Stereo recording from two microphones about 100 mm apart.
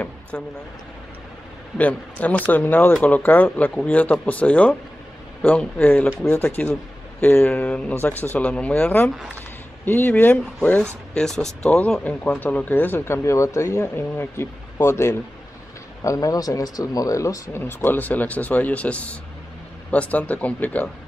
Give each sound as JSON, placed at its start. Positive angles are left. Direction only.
{"t": 0.3, "sound": "speech", "side_deg": 15}
{"t": 1.8, "sound": "speech", "side_deg": 15}